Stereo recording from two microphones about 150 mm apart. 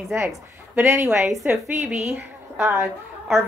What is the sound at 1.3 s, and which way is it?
A woman's voice, centre (ahead or behind).